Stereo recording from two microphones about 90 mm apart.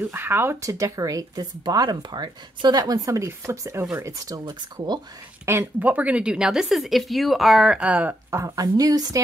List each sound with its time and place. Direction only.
0.1 s speech: 25° right (ahead or behind)
5.4 s a woman's voice: 30° right (ahead or behind)
8.3 s speech: 30° right (ahead or behind)
8.5 s a woman's voice: 45° right (ahead or behind)